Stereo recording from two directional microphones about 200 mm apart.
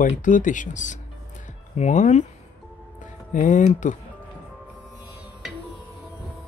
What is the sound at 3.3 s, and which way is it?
Speech, 40° left (ahead or behind).